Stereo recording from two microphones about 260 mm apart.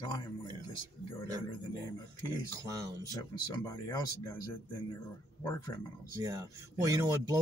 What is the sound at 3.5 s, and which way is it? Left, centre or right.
Speech, centre.